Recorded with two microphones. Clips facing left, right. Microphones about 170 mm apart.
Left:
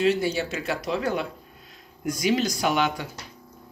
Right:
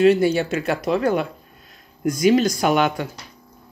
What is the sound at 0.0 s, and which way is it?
Speech, 55° right (ahead or behind).